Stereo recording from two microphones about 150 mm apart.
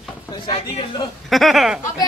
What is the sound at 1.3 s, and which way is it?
Speech, centre (ahead or behind).